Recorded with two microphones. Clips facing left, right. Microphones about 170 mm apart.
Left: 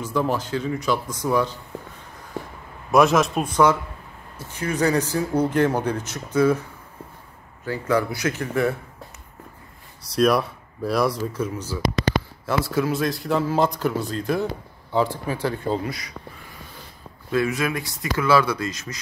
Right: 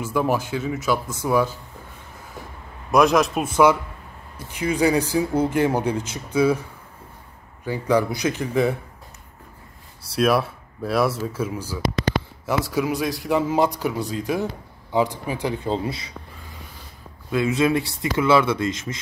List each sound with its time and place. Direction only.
0.0 s speech: 10° right (ahead or behind)
2.9 s speech: centre (ahead or behind)
4.4 s speech: 15° right (ahead or behind)
7.6 s speech: 15° right (ahead or behind)
10.1 s speech: 5° right (ahead or behind); by 16.1 s 25° right (ahead or behind)
17.3 s speech: 25° right (ahead or behind)